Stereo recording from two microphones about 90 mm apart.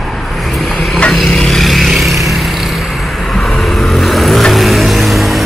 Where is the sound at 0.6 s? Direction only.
Centre (ahead or behind).